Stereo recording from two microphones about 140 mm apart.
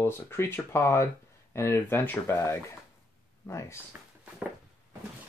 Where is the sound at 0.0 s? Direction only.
20° left (ahead or behind).